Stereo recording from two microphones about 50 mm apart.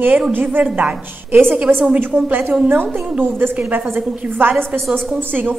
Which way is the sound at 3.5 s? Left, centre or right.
Right.